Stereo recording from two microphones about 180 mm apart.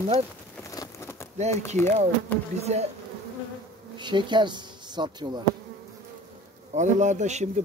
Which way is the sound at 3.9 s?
25° right (ahead or behind).